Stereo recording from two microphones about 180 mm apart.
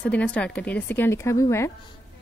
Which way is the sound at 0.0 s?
10° left (ahead or behind).